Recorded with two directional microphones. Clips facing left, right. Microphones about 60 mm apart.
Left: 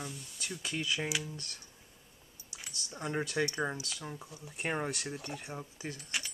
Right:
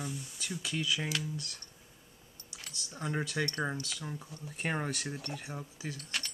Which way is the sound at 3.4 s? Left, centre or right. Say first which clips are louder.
Left 1 dB; centre.